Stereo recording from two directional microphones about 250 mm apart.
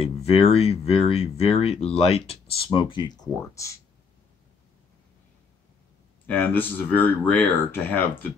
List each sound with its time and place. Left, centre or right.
0.0 s speech: left
6.2 s speech: centre